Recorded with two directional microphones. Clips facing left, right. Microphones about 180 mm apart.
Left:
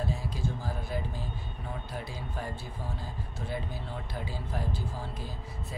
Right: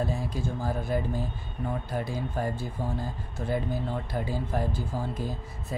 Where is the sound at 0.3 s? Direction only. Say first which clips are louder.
Right 4 dB; 50° right (ahead or behind).